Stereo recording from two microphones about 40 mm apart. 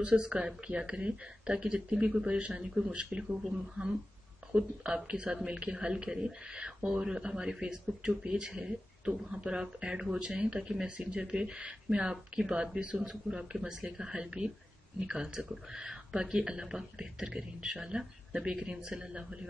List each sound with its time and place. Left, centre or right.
0.0 s speech: right
4.5 s speech: right